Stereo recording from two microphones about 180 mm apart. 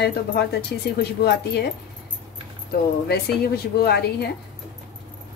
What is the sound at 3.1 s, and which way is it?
A woman's voice, 60° left (ahead or behind).